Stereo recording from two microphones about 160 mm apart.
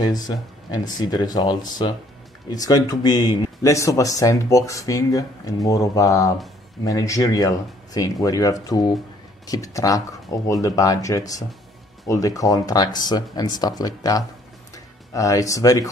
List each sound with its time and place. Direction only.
0.7 s speech: 25° left (ahead or behind)